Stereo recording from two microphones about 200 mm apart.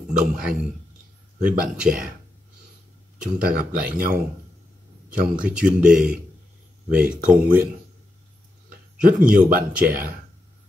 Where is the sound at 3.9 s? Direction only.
50° right (ahead or behind).